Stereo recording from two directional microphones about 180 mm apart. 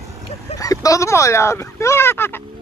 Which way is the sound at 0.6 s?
20° left (ahead or behind).